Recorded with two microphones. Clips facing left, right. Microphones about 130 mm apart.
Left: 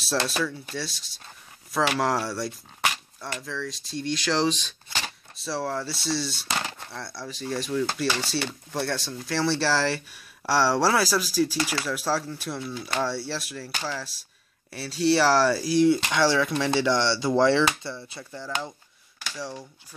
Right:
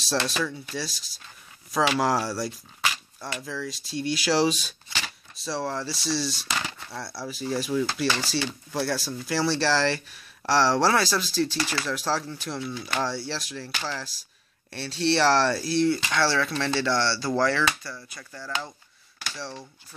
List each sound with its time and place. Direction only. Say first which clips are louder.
0.3 s speech: left 1 dB; centre (ahead or behind)
6.3 s a sound: left 1 dB; 30° left (ahead or behind)
6.9 s speech: right 2 dB; 5° right (ahead or behind); by 19.6 s 10° left (ahead or behind)